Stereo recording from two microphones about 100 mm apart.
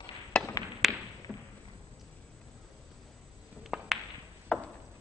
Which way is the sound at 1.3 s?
5° left (ahead or behind).